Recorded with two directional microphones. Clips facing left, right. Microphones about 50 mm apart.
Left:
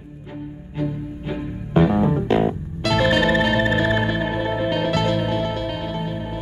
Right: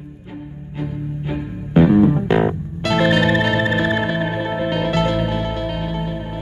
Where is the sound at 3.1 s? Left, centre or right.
Centre.